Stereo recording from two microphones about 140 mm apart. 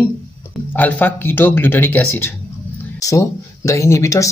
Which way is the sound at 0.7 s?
10° left (ahead or behind).